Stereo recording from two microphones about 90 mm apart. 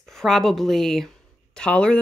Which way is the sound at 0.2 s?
Centre (ahead or behind).